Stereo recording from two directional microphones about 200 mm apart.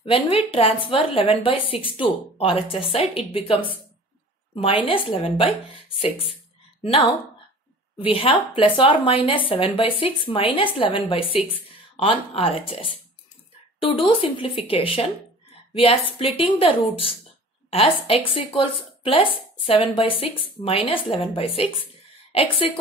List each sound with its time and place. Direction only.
0.0 s a woman's voice: 30° left (ahead or behind)
4.8 s a woman's voice: 25° left (ahead or behind)
8.0 s a woman's voice: 25° left (ahead or behind)